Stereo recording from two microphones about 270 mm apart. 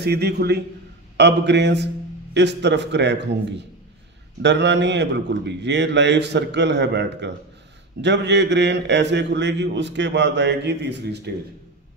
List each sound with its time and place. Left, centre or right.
0.0 s a man's voice: right